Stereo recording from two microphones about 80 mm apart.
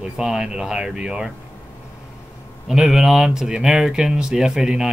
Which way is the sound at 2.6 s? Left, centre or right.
Centre.